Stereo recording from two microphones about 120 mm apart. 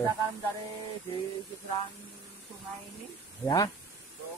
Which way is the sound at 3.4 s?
30° left (ahead or behind).